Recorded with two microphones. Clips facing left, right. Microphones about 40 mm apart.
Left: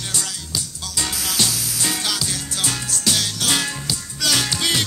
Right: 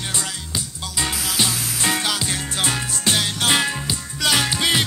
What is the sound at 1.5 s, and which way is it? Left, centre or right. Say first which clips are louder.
Music: right 3 dB; right.